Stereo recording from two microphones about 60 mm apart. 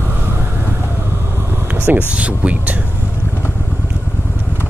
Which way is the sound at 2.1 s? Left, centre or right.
Right.